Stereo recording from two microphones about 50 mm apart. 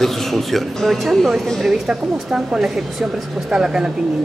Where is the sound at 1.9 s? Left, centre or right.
Centre.